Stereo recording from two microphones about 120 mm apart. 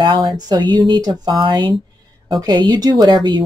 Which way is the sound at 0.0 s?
40° right (ahead or behind).